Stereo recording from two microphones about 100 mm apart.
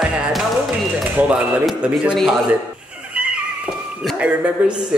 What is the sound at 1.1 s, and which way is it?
Speech, 15° right (ahead or behind).